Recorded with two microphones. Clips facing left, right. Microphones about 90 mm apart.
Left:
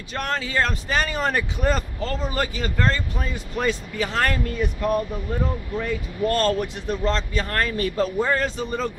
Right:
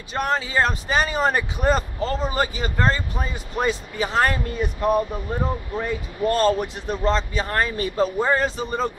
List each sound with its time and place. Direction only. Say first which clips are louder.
0.2 s speech: right 3 dB; 15° right (ahead or behind)